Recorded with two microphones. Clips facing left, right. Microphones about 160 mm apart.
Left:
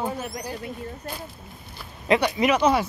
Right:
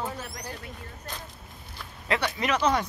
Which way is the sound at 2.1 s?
10° left (ahead or behind).